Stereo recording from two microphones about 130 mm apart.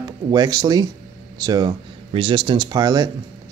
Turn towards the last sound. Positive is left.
turn(degrees=-30)  # may be behind; listen again after turning